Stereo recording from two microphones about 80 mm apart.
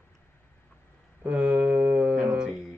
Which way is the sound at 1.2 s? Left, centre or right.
Centre.